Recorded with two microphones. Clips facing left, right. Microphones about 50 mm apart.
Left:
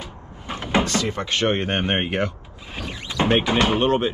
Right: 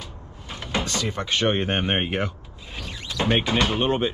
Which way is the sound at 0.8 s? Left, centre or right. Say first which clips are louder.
Left 3 dB; left.